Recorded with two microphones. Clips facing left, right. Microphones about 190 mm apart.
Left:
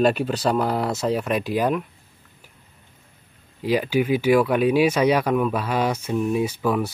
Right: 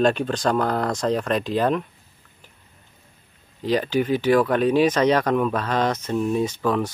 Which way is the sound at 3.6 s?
10° left (ahead or behind).